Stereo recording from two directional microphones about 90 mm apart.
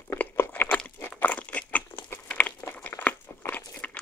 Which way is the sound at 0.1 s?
20° left (ahead or behind).